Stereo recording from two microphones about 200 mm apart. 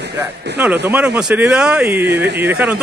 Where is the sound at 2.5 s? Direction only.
5° right (ahead or behind).